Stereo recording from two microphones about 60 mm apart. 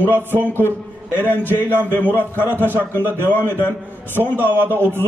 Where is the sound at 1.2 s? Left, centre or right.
Left.